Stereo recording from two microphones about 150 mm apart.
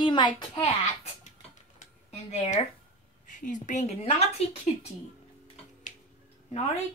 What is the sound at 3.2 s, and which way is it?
A woman's voice, 60° left (ahead or behind).